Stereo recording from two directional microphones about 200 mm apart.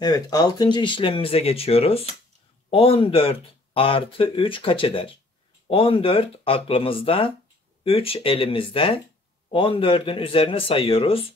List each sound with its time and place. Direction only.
0.0 s speech: 20° left (ahead or behind)